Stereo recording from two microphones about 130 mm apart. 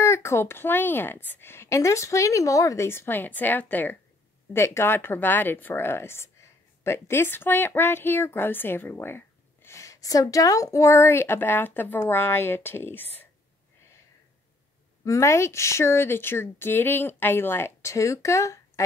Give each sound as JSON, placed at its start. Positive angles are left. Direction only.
{"t": 0.0, "sound": "a woman's voice", "side_deg": 20}
{"t": 15.0, "sound": "a woman's voice", "side_deg": 20}